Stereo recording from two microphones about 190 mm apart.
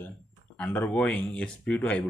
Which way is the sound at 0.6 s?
5° left (ahead or behind).